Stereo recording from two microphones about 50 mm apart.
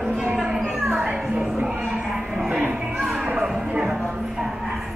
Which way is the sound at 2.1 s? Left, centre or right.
Centre.